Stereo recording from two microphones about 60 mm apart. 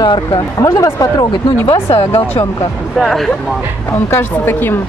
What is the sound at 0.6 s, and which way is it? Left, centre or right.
Speech, left.